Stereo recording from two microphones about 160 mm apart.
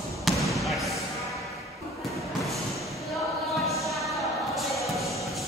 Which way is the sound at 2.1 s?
Centre (ahead or behind).